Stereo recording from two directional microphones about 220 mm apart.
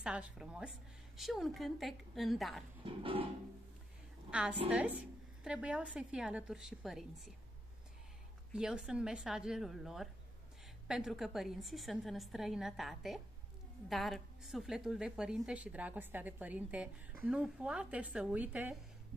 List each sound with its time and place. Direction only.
0.0 s a woman's voice: 5° right (ahead or behind)
2.8 s music: 25° right (ahead or behind)
4.3 s a woman's voice: 5° right (ahead or behind)
8.5 s a woman's voice: 5° right (ahead or behind)